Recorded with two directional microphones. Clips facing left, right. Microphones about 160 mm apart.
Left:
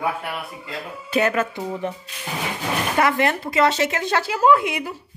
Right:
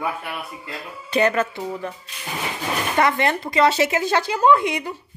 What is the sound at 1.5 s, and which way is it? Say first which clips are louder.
Speech: left 2 dB; 20° left (ahead or behind).